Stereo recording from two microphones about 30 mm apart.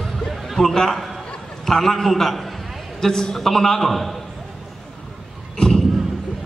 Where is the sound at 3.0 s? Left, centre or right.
Centre.